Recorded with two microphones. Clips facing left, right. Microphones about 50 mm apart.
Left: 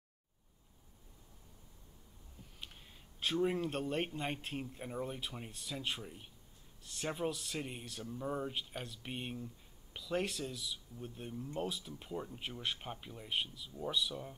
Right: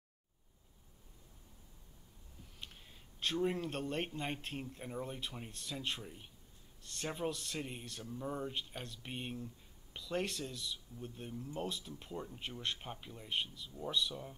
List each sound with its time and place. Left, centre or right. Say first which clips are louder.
2.6 s speech: even; centre